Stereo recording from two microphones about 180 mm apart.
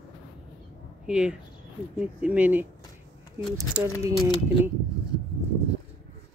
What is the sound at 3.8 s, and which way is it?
Speech, 15° right (ahead or behind).